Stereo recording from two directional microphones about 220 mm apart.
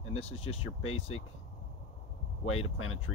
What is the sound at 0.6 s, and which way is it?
Speech, 75° left (ahead or behind).